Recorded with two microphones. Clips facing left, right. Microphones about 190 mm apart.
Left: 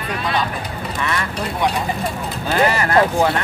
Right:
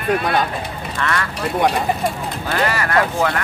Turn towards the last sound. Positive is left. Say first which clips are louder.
# left 3 dB
turn(degrees=25)  # may be behind; listen again after turning